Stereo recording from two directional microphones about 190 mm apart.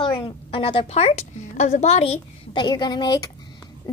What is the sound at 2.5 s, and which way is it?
Speech, 25° left (ahead or behind).